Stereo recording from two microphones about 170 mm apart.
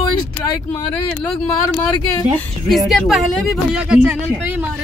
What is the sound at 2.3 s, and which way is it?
Speech, centre (ahead or behind).